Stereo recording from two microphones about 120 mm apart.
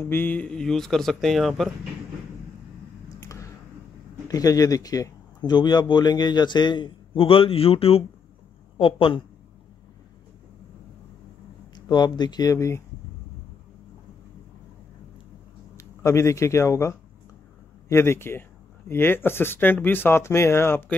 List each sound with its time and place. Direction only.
0.0 s speech: 15° left (ahead or behind); by 1.7 s centre (ahead or behind)
3.3 s a sound: 25° left (ahead or behind)
4.3 s a woman's voice: 30° left (ahead or behind); by 9.2 s 45° left (ahead or behind)
11.7 s speech: 35° left (ahead or behind)
15.7 s speech: 25° left (ahead or behind)